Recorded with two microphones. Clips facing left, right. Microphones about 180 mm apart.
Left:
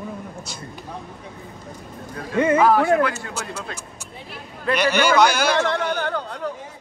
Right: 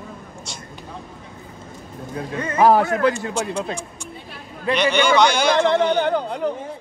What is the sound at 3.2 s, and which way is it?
Speech, 20° right (ahead or behind).